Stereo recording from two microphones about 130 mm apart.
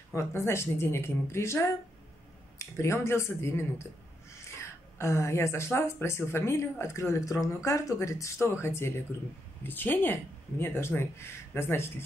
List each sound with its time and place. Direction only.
0.1 s speech: 20° left (ahead or behind)